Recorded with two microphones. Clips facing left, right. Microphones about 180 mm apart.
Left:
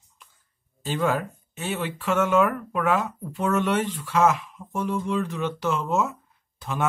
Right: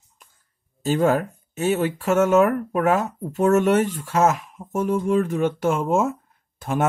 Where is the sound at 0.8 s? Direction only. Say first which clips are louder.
Right 6 dB; 45° right (ahead or behind).